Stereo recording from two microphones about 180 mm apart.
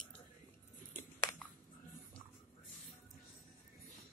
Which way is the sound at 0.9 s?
10° left (ahead or behind).